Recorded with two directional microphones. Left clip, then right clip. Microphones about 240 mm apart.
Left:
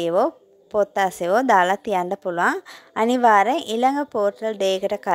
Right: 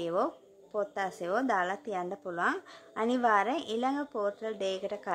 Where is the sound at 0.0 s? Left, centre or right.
Left.